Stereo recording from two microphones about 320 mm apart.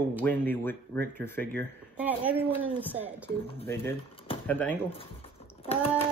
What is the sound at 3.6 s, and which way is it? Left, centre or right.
Speech, centre.